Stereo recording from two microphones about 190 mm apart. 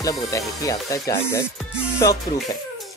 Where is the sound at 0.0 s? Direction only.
20° left (ahead or behind).